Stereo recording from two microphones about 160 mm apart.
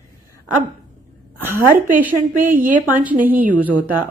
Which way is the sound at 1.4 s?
15° right (ahead or behind).